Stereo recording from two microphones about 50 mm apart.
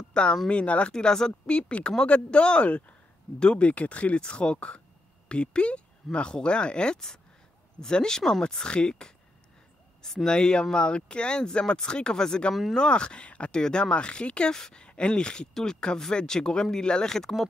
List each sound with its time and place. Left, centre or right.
0.1 s speech: centre